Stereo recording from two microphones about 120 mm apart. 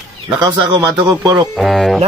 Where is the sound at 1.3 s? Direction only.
Centre (ahead or behind).